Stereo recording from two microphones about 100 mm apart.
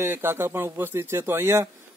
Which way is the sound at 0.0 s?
25° right (ahead or behind).